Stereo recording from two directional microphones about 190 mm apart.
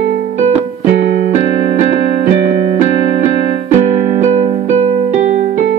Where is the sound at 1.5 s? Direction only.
35° right (ahead or behind).